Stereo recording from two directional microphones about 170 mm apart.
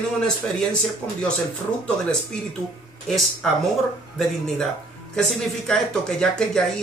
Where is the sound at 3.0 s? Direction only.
Centre (ahead or behind).